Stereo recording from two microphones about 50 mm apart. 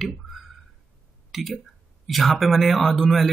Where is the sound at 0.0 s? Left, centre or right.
Centre.